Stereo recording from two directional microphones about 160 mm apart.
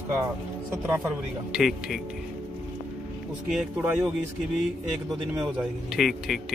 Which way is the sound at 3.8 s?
10° right (ahead or behind).